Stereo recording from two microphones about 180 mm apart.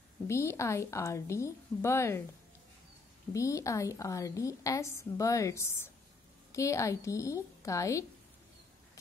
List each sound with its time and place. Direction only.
0.3 s a woman's voice: 15° left (ahead or behind)
3.3 s a woman's voice: 15° left (ahead or behind)